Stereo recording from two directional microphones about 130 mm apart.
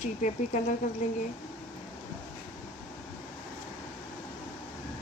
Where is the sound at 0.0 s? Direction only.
65° left (ahead or behind).